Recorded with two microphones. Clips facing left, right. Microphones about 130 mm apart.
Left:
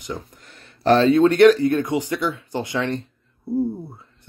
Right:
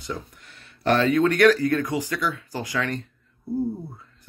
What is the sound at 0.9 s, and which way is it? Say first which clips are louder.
Speech: left 5 dB; 30° left (ahead or behind).